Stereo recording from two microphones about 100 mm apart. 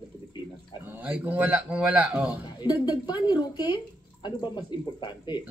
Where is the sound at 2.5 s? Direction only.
45° left (ahead or behind).